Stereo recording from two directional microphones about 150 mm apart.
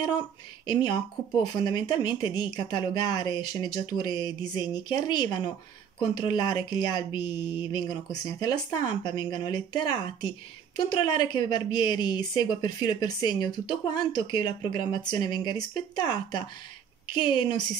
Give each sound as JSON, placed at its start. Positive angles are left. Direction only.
{"t": 1.4, "sound": "a woman's voice", "side_deg": 30}